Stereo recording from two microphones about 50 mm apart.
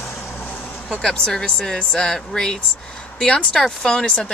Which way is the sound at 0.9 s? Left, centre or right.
Centre.